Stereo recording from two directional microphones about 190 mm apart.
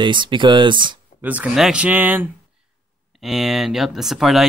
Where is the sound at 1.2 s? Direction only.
5° right (ahead or behind).